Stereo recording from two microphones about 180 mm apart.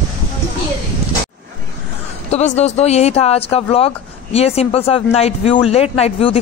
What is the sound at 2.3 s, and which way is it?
Speech, 40° left (ahead or behind).